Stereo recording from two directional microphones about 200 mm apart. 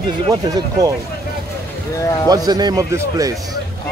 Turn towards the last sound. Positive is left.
turn(degrees=-15)  # may be behind; listen again after turning